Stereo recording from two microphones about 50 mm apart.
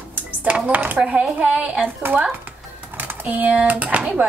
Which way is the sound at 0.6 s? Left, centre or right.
Right.